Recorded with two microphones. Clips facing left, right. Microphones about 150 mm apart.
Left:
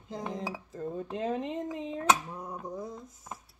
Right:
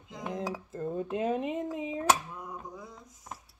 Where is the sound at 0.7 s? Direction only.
Centre (ahead or behind).